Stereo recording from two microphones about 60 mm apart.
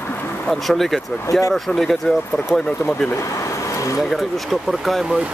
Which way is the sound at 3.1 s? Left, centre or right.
Left.